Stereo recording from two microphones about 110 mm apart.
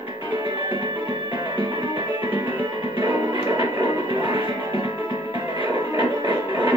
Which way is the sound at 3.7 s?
45° right (ahead or behind).